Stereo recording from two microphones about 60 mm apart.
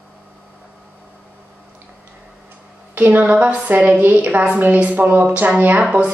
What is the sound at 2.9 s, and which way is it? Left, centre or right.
A woman's voice, right.